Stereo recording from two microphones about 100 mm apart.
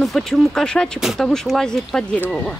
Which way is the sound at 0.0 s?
Centre (ahead or behind).